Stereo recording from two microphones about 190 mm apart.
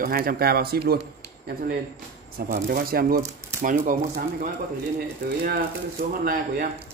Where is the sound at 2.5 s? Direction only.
50° right (ahead or behind).